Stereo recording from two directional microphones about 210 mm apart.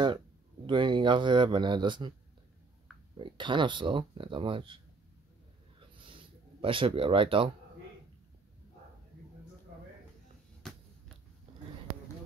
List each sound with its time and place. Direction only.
0.7 s speech: 20° right (ahead or behind)
3.2 s speech: 25° right (ahead or behind)
5.8 s a sound: 25° right (ahead or behind)